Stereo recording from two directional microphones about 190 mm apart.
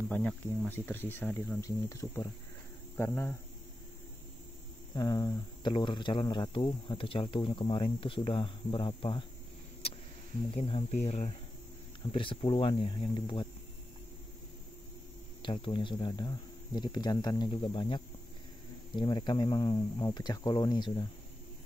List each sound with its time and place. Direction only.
0.1 s speech: 5° left (ahead or behind)
4.9 s speech: 20° left (ahead or behind)
10.5 s speech: 30° left (ahead or behind)
15.4 s speech: 25° left (ahead or behind)